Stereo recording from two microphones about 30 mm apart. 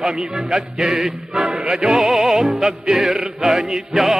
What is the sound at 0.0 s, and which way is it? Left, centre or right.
Music, centre.